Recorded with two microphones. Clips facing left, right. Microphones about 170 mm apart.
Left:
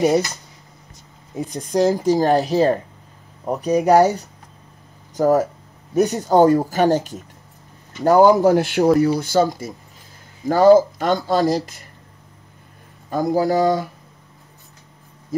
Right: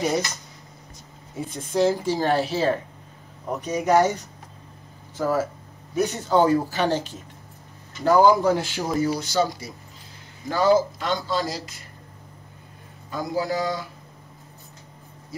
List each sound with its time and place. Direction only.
1.7 s speech: 40° left (ahead or behind)
13.1 s speech: 50° left (ahead or behind)